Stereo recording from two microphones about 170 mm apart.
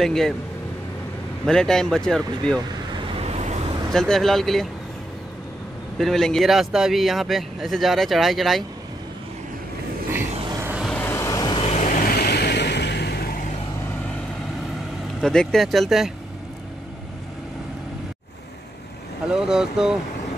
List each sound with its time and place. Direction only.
0.0 s speech: centre (ahead or behind)
1.4 s speech: 5° left (ahead or behind)
3.2 s vehicle: 40° right (ahead or behind)
3.9 s speech: 5° left (ahead or behind)
5.9 s speech: centre (ahead or behind)
10.5 s vehicle: 15° right (ahead or behind)
10.8 s vehicle: 5° left (ahead or behind)
11.1 s vehicle: 20° left (ahead or behind); by 11.9 s 35° left (ahead or behind)
12.2 s vehicle: 75° left (ahead or behind); by 13.5 s 60° left (ahead or behind)
15.1 s speech: centre (ahead or behind)
19.4 s speech: 5° right (ahead or behind)